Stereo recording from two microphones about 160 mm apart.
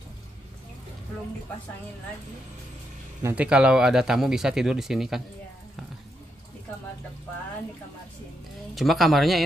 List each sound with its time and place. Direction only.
3.2 s speech: 15° right (ahead or behind)
3.4 s speech: 5° right (ahead or behind)
8.7 s speech: centre (ahead or behind)